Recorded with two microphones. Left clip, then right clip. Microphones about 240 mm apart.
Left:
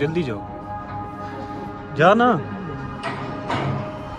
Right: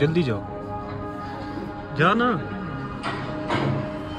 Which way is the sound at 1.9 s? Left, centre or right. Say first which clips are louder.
Left 5 dB; centre.